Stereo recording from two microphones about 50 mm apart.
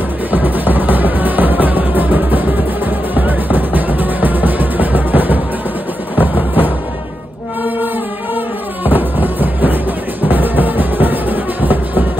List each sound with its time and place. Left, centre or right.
0.3 s music: right
8.8 s music: right